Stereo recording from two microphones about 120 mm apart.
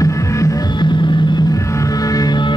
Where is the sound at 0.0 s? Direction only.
25° left (ahead or behind).